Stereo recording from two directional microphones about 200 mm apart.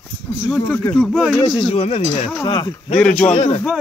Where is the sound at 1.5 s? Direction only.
25° left (ahead or behind).